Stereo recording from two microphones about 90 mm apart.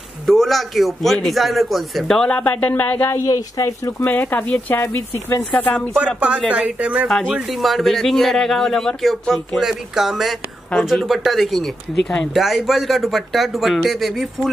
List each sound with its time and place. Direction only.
0.3 s speech: 5° left (ahead or behind); by 3.2 s 20° left (ahead or behind)
3.3 s speech: 40° left (ahead or behind)
4.0 s speech: 20° left (ahead or behind)
6.1 s speech: 15° right (ahead or behind)
7.1 s speech: centre (ahead or behind)